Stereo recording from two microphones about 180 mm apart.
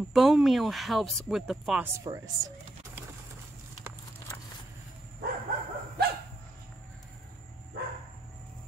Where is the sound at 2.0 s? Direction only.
20° right (ahead or behind).